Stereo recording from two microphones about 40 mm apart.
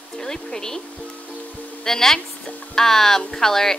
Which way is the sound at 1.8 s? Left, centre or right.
Centre.